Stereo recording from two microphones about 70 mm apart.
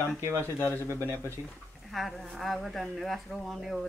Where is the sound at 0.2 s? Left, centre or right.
Right.